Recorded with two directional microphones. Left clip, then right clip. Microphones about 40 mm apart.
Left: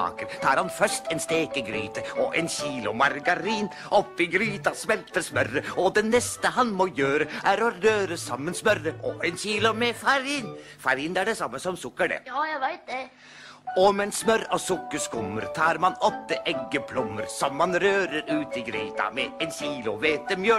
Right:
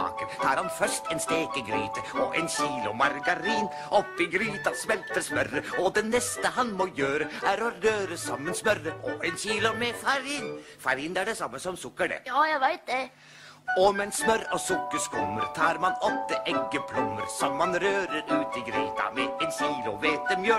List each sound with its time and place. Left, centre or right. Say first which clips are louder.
0.4 s speech: left 4 dB; left
5.1 s speech: left 2 dB; left
5.9 s speech: left 4 dB; left
7.1 s speech: left 4 dB; left
14.9 s speech: right 1 dB; left
17.9 s speech: left 2 dB; left